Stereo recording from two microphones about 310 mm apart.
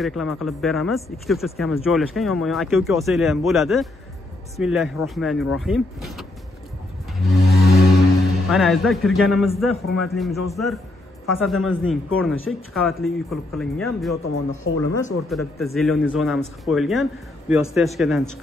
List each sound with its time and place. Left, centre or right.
0.0 s a man's voice: centre
7.2 s vehicle: centre
7.9 s a man's voice: centre
14.2 s speech: left
15.2 s a man's voice: centre